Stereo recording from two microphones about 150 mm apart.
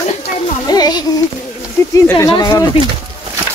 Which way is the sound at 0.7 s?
25° left (ahead or behind).